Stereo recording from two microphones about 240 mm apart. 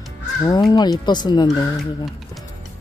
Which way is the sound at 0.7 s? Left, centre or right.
Centre.